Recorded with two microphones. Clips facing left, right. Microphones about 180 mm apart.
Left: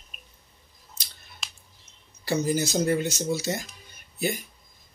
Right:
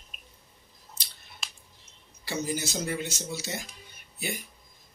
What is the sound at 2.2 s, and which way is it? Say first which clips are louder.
Speech: left 7 dB; 40° left (ahead or behind).